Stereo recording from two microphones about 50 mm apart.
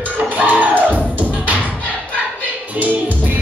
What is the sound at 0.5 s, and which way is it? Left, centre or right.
Music, right.